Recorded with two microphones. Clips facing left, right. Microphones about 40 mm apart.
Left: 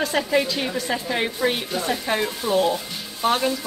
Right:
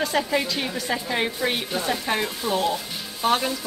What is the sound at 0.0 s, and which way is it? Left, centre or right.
A woman's voice, centre.